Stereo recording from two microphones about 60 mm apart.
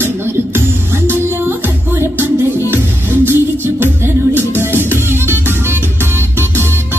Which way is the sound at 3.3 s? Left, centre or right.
Right.